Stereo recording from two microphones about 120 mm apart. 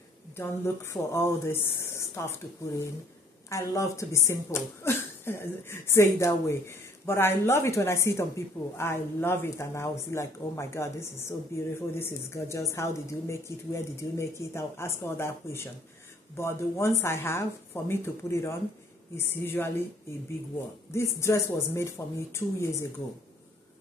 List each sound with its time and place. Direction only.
0.4 s speech: 20° left (ahead or behind)
20.9 s speech: 25° left (ahead or behind)